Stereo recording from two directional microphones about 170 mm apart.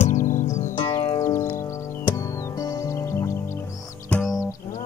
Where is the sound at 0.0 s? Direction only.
50° left (ahead or behind).